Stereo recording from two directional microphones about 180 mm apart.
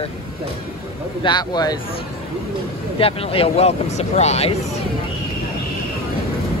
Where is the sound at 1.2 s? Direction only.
25° left (ahead or behind).